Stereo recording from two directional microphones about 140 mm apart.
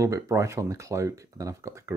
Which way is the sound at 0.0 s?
20° right (ahead or behind).